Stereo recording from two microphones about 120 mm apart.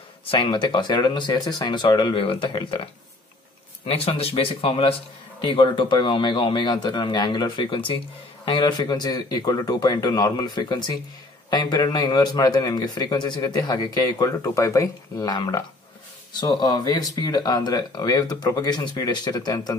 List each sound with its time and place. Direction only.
0.3 s a man's voice: 45° left (ahead or behind)
3.9 s a man's voice: 55° left (ahead or behind); by 19.7 s 35° left (ahead or behind)